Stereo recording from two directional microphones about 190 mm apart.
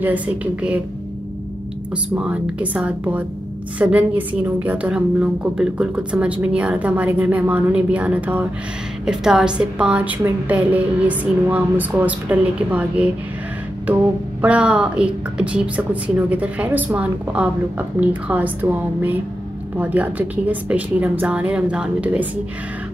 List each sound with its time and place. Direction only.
0.0 s a woman's voice: 5° right (ahead or behind)
2.1 s a woman's voice: 5° right (ahead or behind)
14.4 s a woman's voice: 5° right (ahead or behind)